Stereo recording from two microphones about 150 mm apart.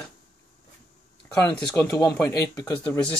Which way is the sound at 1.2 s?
10° left (ahead or behind).